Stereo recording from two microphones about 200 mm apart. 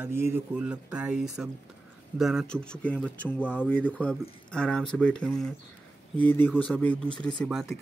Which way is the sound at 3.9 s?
5° left (ahead or behind).